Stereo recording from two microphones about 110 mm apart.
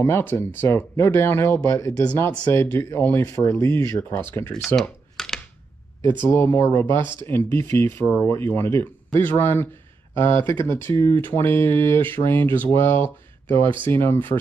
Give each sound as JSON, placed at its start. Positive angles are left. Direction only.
{"t": 0.0, "sound": "speech", "side_deg": 20}
{"t": 4.7, "sound": "computer keyboard", "side_deg": 5}
{"t": 6.2, "sound": "speech", "side_deg": 20}